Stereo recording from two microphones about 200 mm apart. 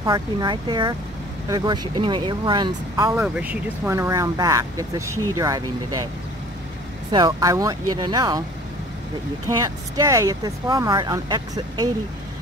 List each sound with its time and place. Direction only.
0.0 s speech: 20° right (ahead or behind)
3.2 s speech: 5° right (ahead or behind)
7.1 s speech: 20° right (ahead or behind)
9.6 s speech: 15° right (ahead or behind)